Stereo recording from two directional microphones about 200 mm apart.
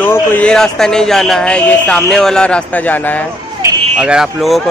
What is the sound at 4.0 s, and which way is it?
Speech, 5° right (ahead or behind).